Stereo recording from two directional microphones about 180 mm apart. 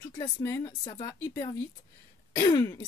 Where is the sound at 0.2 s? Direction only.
15° left (ahead or behind).